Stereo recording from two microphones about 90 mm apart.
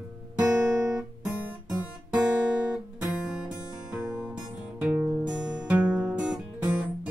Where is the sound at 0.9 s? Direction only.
10° right (ahead or behind).